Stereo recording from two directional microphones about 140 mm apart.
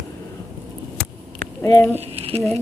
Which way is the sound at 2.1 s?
45° right (ahead or behind).